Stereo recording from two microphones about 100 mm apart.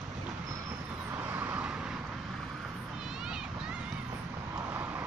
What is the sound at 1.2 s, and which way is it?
Vehicle, 20° right (ahead or behind).